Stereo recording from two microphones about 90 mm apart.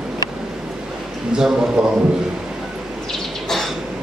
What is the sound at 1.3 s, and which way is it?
Speech, 5° right (ahead or behind).